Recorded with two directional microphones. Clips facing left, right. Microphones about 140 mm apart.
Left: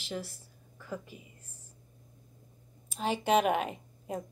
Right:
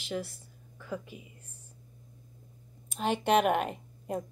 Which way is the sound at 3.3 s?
55° right (ahead or behind).